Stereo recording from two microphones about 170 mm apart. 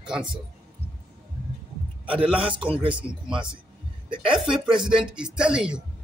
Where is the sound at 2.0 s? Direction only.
30° right (ahead or behind).